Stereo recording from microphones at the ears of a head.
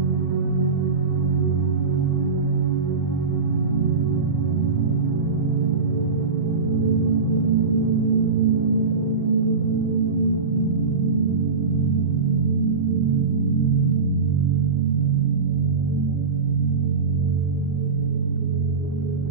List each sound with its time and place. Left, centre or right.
6.9 s ambient music: right
12.4 s music: right